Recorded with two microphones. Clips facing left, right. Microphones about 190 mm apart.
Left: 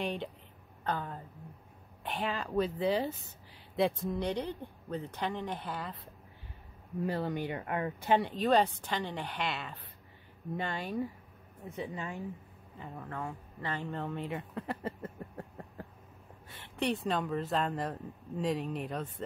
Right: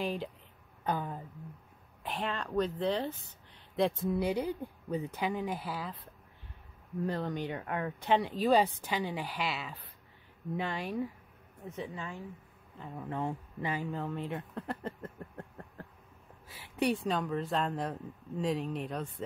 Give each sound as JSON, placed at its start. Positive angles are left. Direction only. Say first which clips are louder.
{"t": 0.0, "sound": "speech", "louder": "right 1 dB", "side_deg": 0}
{"t": 0.8, "sound": "speech", "louder": "right 2 dB", "side_deg": -15}
{"t": 2.0, "sound": "speech", "louder": "left 1 dB", "side_deg": 0}
{"t": 7.1, "sound": "speech", "louder": "left 1 dB", "side_deg": 5}
{"t": 11.7, "sound": "a woman's voice", "louder": "left 2 dB", "side_deg": 15}
{"t": 12.7, "sound": "speech", "louder": "right 1 dB", "side_deg": 0}
{"t": 13.0, "sound": "speech", "louder": "right 6 dB", "side_deg": -20}
{"t": 13.7, "sound": "speech", "louder": "right 1 dB", "side_deg": -5}
{"t": 16.4, "sound": "speech", "louder": "right 2 dB", "side_deg": 0}